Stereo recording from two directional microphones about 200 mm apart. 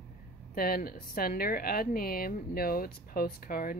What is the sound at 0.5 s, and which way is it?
A woman's voice, 50° left (ahead or behind).